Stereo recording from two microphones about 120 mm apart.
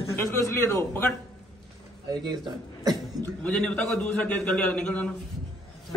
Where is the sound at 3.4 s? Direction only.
10° left (ahead or behind).